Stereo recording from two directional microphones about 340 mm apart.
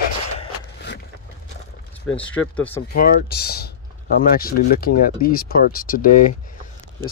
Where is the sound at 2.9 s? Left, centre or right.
Left.